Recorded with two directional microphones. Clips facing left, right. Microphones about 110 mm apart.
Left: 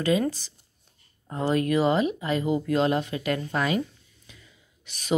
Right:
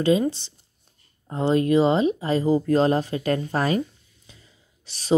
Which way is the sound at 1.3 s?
25° right (ahead or behind).